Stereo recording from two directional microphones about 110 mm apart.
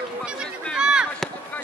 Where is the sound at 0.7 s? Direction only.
5° right (ahead or behind).